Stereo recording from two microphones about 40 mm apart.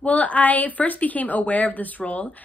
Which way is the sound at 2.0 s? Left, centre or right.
Left.